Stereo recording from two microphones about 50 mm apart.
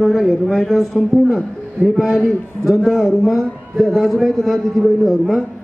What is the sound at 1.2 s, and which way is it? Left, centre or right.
A man's voice, centre.